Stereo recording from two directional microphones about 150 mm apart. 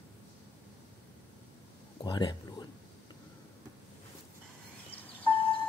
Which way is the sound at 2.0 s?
25° left (ahead or behind).